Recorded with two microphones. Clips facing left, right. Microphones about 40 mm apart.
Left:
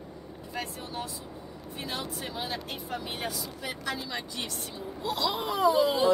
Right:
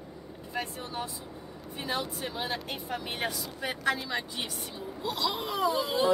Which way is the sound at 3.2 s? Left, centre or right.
Right.